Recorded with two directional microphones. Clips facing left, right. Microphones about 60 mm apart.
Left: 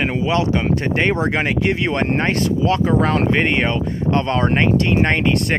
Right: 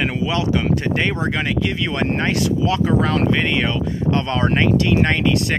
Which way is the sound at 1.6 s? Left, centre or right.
Left.